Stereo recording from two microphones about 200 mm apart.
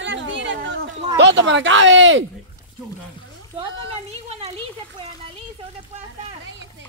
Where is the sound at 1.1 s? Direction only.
60° right (ahead or behind).